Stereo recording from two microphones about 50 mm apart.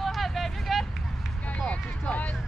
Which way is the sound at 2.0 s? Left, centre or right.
Left.